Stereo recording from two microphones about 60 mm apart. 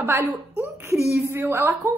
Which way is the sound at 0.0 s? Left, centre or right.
Right.